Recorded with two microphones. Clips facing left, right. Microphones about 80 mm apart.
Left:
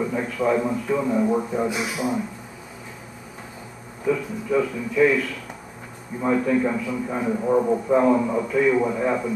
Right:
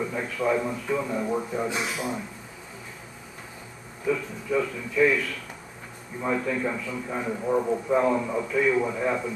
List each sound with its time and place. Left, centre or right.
0.0 s a man's voice: centre
4.0 s a man's voice: centre